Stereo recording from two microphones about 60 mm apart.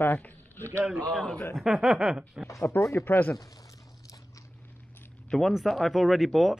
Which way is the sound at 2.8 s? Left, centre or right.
Left.